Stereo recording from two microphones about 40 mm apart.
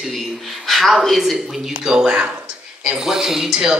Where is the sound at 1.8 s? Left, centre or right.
Centre.